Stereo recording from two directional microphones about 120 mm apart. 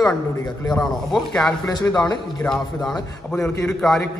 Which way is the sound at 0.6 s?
5° left (ahead or behind).